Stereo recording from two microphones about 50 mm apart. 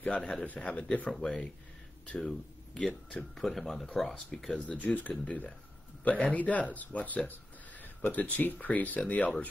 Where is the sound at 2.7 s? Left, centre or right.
Left.